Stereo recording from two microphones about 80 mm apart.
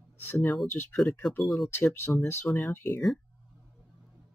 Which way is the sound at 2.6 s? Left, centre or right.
Left.